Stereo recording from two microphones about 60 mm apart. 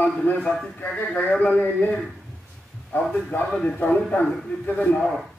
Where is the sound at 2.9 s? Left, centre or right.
Left.